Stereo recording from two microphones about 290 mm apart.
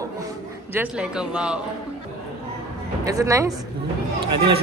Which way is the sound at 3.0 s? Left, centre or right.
Centre.